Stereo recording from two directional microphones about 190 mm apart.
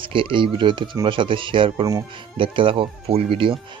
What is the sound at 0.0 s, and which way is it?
A man's voice, 25° right (ahead or behind).